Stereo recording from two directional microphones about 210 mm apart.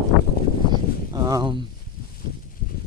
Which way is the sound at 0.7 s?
20° right (ahead or behind).